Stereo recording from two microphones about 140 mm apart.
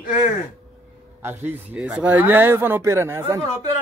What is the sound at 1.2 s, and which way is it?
Speech, 15° right (ahead or behind).